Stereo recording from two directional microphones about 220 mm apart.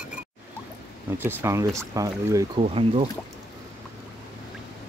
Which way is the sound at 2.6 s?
25° right (ahead or behind).